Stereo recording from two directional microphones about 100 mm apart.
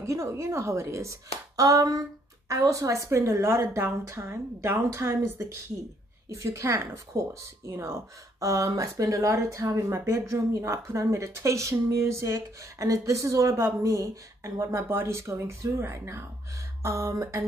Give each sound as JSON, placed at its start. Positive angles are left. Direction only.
{"t": 0.0, "sound": "a woman's voice", "side_deg": -30}